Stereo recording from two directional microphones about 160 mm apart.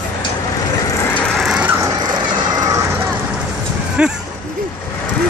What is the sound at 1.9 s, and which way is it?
Vehicle, 25° right (ahead or behind).